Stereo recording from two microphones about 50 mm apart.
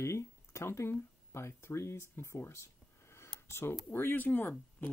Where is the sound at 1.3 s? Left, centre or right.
Left.